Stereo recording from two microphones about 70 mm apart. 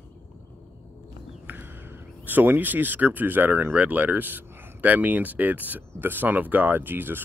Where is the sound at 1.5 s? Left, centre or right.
Right.